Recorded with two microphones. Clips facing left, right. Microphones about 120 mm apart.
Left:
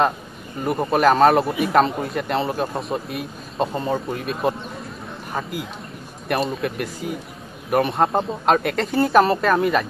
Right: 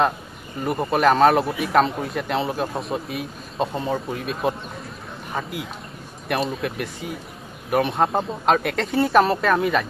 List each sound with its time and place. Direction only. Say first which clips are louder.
0.7 s speech: left 1 dB; centre (ahead or behind)